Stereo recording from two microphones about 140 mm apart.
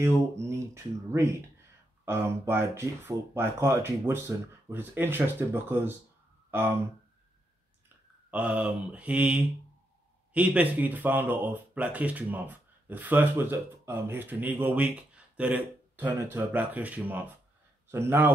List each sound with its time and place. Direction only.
0.0 s speech: 20° right (ahead or behind)
8.3 s speech: 10° right (ahead or behind)